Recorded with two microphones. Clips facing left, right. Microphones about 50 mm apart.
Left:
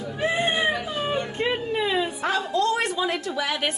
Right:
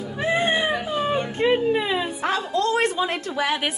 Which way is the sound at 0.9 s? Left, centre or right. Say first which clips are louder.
Right 3 dB; centre.